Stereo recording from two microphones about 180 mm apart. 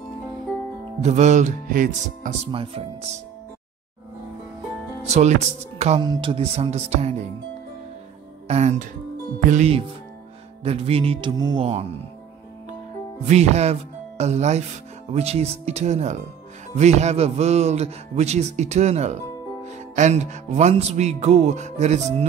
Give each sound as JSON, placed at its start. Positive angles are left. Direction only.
{"t": 1.0, "sound": "music", "side_deg": -40}
{"t": 2.5, "sound": "music", "side_deg": -30}
{"t": 5.0, "sound": "music", "side_deg": -40}
{"t": 8.5, "sound": "music", "side_deg": -40}
{"t": 13.2, "sound": "speech", "side_deg": -40}
{"t": 15.1, "sound": "music", "side_deg": -35}